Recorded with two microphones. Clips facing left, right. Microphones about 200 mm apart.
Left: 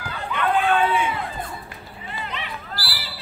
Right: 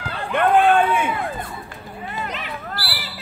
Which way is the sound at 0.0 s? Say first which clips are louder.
Right 5 dB; 50° right (ahead or behind).